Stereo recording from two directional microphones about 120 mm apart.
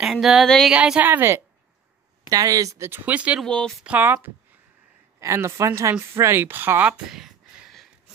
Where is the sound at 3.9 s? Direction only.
15° right (ahead or behind).